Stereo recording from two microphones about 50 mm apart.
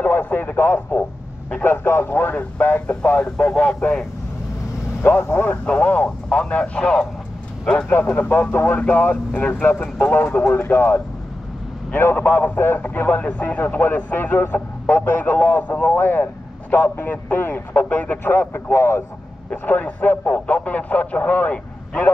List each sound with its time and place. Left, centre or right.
0.0 s a man's voice: left
5.3 s speech: left
5.7 s speech: left
6.6 s a man's voice: centre
8.1 s a man's voice: left
10.5 s a man's voice: left
13.2 s a man's voice: left
18.2 s speech: left
19.6 s speech: left